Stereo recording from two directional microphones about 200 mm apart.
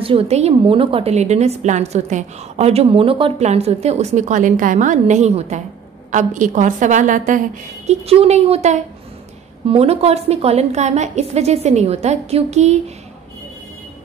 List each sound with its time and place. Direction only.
0.0 s a woman's voice: 30° right (ahead or behind)